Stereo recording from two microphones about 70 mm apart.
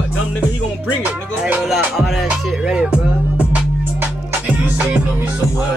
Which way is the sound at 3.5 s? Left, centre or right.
Right.